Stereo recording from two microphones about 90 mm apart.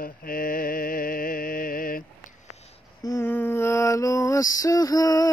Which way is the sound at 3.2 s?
25° left (ahead or behind).